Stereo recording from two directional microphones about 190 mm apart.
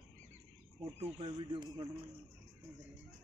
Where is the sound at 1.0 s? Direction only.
25° right (ahead or behind).